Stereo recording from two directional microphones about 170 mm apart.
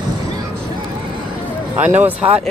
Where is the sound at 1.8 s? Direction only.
10° right (ahead or behind).